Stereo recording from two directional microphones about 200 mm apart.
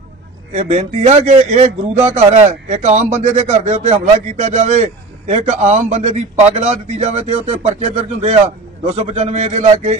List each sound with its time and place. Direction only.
0.6 s a man's voice: 35° right (ahead or behind)